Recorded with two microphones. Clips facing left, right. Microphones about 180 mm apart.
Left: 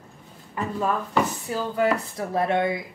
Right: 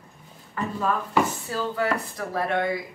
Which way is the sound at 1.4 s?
20° left (ahead or behind).